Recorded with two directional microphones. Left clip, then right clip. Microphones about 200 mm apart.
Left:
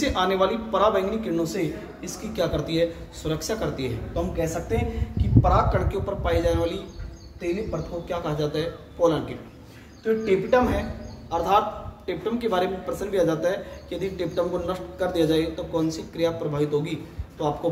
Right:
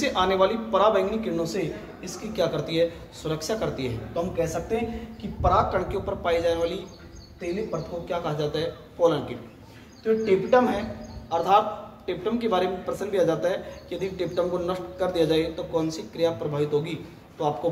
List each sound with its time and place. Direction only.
0.0 s a man's voice: 20° right (ahead or behind)